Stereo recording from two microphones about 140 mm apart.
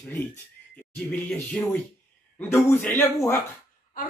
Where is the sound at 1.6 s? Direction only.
10° left (ahead or behind).